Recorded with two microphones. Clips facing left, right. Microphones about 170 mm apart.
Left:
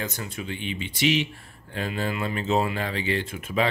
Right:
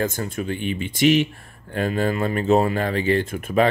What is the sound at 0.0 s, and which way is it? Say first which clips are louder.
Speech: right 8 dB; 50° right (ahead or behind).